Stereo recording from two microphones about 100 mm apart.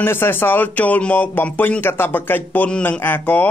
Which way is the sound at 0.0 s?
25° left (ahead or behind).